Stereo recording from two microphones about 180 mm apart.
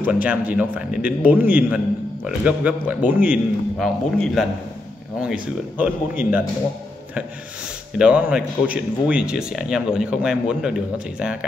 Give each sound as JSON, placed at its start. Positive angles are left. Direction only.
{"t": 0.0, "sound": "a man's voice", "side_deg": -10}
{"t": 8.0, "sound": "speech", "side_deg": -5}